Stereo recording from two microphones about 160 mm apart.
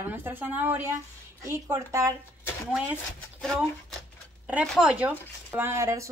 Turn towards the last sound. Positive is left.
turn(degrees=-15)  # may be behind; listen again after turning